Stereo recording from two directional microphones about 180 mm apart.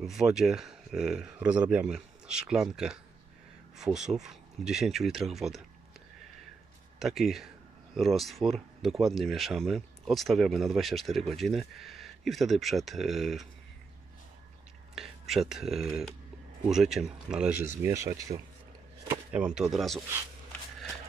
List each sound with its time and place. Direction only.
0.0 s speech: centre (ahead or behind)
7.0 s speech: centre (ahead or behind)
15.0 s speech: centre (ahead or behind)
17.6 s speech: 15° right (ahead or behind)
19.3 s speech: 5° right (ahead or behind)